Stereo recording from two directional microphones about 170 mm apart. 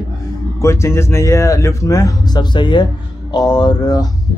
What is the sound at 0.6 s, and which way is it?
Speech, 15° left (ahead or behind).